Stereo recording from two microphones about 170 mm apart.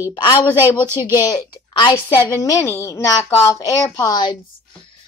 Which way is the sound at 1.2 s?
25° left (ahead or behind).